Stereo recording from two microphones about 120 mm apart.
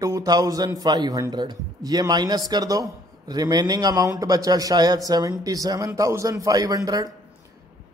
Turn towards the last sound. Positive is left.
turn(degrees=-30)  # may be behind; listen again after turning